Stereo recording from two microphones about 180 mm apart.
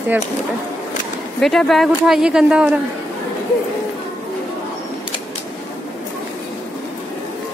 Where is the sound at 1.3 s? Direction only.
Centre (ahead or behind).